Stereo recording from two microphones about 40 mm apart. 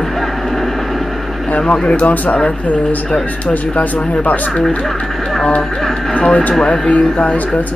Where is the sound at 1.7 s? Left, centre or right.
Left.